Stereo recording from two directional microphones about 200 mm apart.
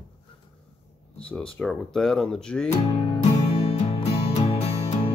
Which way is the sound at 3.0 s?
25° left (ahead or behind).